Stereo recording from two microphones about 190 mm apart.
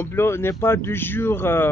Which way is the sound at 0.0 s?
15° left (ahead or behind).